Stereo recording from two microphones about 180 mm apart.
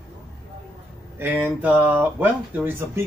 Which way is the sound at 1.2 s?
10° right (ahead or behind).